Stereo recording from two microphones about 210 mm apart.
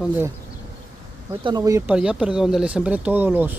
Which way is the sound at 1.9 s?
5° right (ahead or behind).